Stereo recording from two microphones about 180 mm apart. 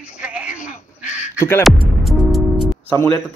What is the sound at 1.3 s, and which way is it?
Music, 15° left (ahead or behind).